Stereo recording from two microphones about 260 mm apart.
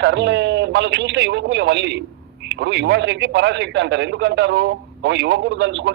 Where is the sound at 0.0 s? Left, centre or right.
Right.